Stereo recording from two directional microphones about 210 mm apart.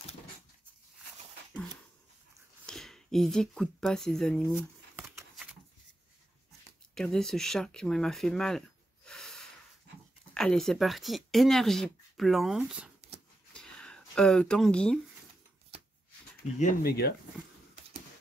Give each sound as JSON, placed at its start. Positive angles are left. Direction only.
{"t": 2.6, "sound": "speech", "side_deg": 0}
{"t": 4.5, "sound": "a sound", "side_deg": -10}
{"t": 5.3, "sound": "shuffling cards", "side_deg": -5}
{"t": 7.0, "sound": "speech", "side_deg": 0}
{"t": 13.5, "sound": "a sound", "side_deg": 5}
{"t": 16.5, "sound": "speech", "side_deg": 40}